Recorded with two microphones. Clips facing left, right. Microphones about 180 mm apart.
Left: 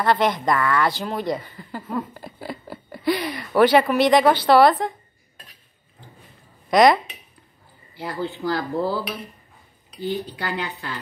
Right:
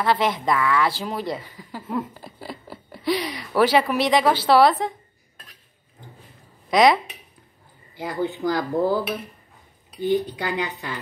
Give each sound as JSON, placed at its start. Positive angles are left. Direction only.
{"t": 0.0, "sound": "speech", "side_deg": -5}
{"t": 6.7, "sound": "speech", "side_deg": 0}
{"t": 7.9, "sound": "speech", "side_deg": -15}